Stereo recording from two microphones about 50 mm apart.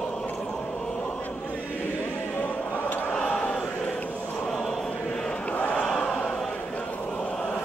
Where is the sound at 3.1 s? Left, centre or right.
Centre.